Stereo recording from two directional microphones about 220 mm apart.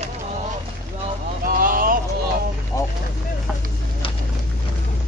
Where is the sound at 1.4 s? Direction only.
40° right (ahead or behind).